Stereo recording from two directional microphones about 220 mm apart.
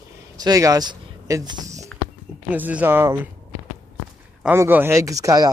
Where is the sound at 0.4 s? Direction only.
15° right (ahead or behind).